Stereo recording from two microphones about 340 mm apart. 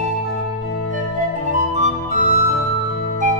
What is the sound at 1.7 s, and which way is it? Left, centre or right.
Music, right.